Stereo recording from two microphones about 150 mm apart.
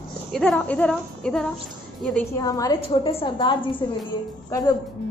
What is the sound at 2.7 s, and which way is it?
A woman's voice, 35° left (ahead or behind).